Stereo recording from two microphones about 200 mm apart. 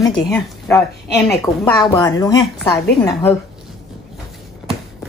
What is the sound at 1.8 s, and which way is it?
Speech, 20° left (ahead or behind).